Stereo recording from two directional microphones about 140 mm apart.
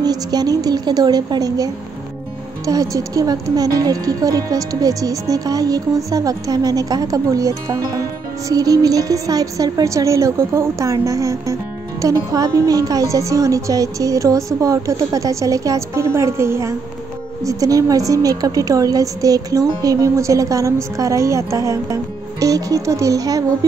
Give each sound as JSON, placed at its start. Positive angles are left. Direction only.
{"t": 0.0, "sound": "a woman's voice", "side_deg": -30}